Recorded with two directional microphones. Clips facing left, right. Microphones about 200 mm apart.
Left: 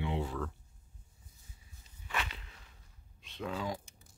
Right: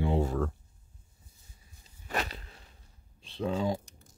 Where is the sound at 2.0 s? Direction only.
40° right (ahead or behind).